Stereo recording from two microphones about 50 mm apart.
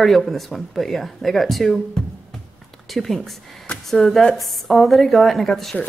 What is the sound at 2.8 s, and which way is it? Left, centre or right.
Speech, centre.